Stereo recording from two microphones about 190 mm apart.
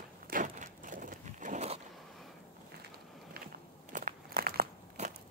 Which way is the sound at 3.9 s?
50° right (ahead or behind).